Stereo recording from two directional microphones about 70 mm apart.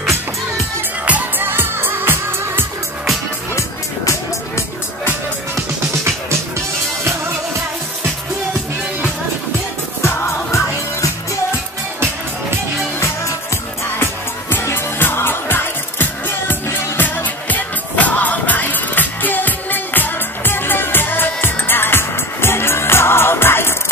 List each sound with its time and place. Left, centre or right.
1.0 s music: right
3.5 s music: left
10.0 s music: left
13.0 s music: left